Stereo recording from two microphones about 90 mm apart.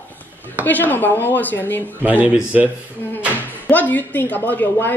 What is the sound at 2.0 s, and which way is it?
Speech, 20° right (ahead or behind).